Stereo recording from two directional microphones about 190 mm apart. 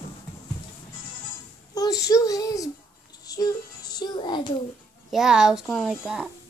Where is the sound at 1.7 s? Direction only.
20° left (ahead or behind).